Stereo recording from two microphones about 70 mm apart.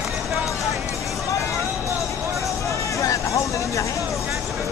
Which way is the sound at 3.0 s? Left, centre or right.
Left.